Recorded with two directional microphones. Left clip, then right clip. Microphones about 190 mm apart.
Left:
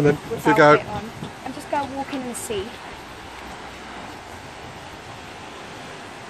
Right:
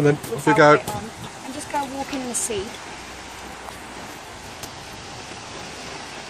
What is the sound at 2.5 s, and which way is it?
Speech, 5° left (ahead or behind).